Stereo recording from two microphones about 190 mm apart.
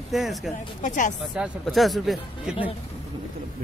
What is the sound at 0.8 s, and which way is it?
Speech, 40° left (ahead or behind).